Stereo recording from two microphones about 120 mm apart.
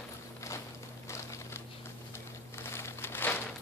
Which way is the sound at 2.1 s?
20° left (ahead or behind).